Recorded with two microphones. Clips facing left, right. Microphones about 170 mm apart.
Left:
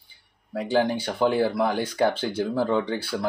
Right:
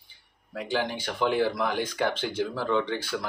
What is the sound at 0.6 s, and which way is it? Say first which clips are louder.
Speech: left 6 dB; 35° left (ahead or behind).